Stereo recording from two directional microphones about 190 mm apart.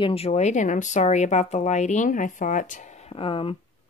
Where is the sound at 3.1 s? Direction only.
25° left (ahead or behind).